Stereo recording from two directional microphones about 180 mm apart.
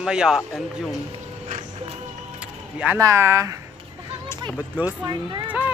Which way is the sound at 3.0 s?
15° right (ahead or behind).